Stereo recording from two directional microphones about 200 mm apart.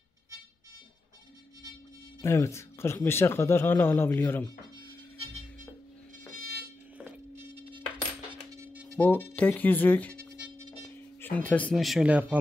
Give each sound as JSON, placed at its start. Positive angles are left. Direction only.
{"t": 2.2, "sound": "speech", "side_deg": 15}
{"t": 6.3, "sound": "a sound", "side_deg": -45}
{"t": 8.9, "sound": "speech", "side_deg": 10}
{"t": 11.1, "sound": "speech", "side_deg": 10}